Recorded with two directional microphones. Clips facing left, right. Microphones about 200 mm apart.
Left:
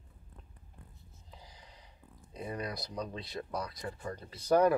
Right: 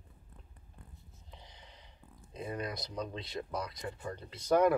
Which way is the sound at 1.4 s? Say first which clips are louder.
Even; 25° right (ahead or behind).